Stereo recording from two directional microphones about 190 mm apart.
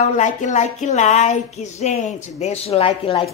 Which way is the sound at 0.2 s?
40° left (ahead or behind).